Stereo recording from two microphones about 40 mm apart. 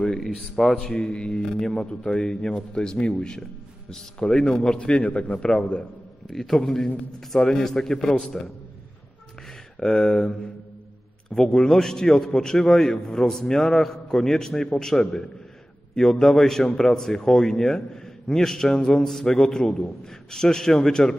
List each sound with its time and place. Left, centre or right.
0.0 s a man's voice: centre
0.4 s a man's voice: centre
0.7 s a man's voice: centre
4.7 s a man's voice: left
5.4 s a man's voice: left
6.3 s a man's voice: centre
9.8 s a man's voice: centre